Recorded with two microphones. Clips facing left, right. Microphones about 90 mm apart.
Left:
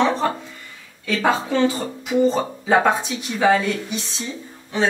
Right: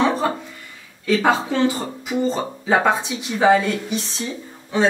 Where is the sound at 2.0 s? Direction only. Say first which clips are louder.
Left 4 dB; 5° right (ahead or behind).